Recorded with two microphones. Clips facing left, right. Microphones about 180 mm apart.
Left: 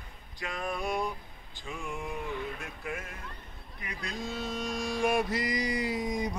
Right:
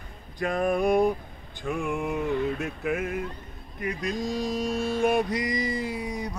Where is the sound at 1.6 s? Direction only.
60° right (ahead or behind).